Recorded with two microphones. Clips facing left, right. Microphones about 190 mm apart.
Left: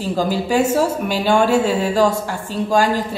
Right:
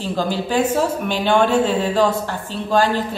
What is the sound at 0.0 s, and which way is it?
Speech, 10° left (ahead or behind).